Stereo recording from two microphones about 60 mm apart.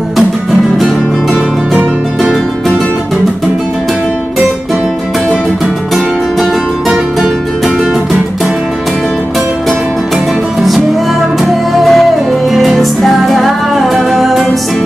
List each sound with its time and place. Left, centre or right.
11.8 s music: centre